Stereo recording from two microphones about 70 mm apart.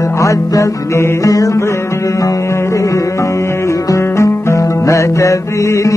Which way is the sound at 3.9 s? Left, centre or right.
Left.